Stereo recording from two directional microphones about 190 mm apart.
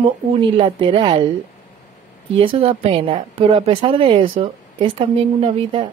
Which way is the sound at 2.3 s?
30° right (ahead or behind).